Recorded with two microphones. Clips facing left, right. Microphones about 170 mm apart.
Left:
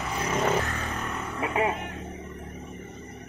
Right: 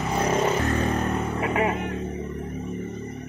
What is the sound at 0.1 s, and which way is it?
Vehicle, 40° right (ahead or behind).